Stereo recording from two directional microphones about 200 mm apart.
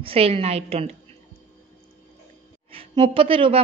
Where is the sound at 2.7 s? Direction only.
25° right (ahead or behind).